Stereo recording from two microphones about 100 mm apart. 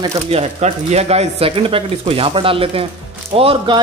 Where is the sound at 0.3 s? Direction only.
90° right; by 3.7 s 75° right (ahead or behind).